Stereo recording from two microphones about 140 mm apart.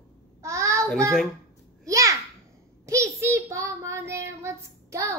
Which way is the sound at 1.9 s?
25° right (ahead or behind).